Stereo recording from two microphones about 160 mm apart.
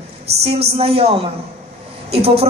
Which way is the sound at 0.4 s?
40° right (ahead or behind).